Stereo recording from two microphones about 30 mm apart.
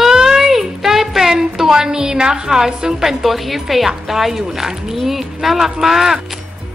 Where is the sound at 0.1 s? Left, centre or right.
Right.